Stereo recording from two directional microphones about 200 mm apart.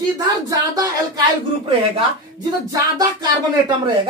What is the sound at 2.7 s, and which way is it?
Speech, 20° right (ahead or behind).